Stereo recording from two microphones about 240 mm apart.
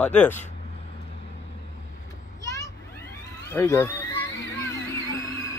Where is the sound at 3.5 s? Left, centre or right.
Centre.